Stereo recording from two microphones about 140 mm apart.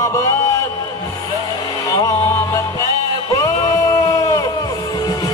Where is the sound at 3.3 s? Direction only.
20° left (ahead or behind).